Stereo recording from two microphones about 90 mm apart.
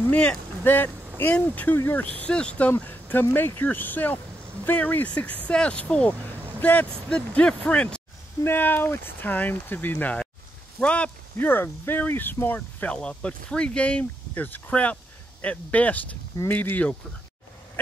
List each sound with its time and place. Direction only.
0.1 s speech: 15° left (ahead or behind)
11.3 s speech: 25° left (ahead or behind)
12.5 s speech: 10° left (ahead or behind)